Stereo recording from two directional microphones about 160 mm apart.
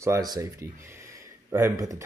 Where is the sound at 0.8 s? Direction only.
15° right (ahead or behind).